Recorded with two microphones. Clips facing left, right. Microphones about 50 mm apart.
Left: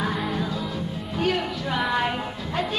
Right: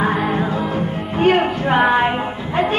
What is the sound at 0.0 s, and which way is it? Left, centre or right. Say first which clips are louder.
Music: right 8 dB; right.